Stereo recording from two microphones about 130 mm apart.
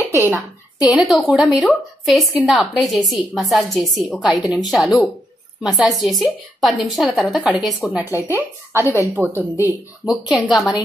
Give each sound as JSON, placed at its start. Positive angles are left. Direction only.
{"t": 0.1, "sound": "a woman's voice", "side_deg": -15}
{"t": 0.8, "sound": "speech", "side_deg": 0}
{"t": 8.0, "sound": "a woman's voice", "side_deg": -15}
{"t": 10.0, "sound": "speech", "side_deg": -5}